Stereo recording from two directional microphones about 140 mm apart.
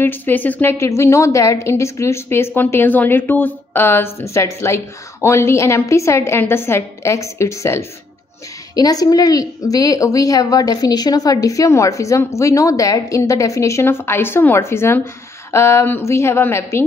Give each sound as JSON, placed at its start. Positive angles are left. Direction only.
{"t": 0.0, "sound": "a woman's voice", "side_deg": 15}